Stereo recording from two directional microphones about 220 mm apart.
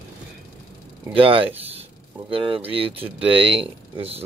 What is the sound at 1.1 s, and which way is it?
Speech, 25° right (ahead or behind).